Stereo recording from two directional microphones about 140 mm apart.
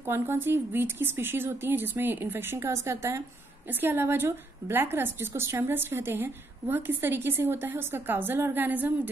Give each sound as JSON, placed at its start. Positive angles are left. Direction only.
{"t": 0.0, "sound": "speech", "side_deg": -15}